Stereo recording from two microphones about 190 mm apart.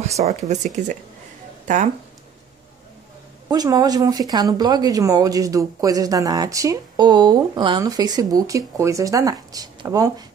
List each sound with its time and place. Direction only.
0.1 s speech: 35° right (ahead or behind)
3.4 s speech: 20° right (ahead or behind)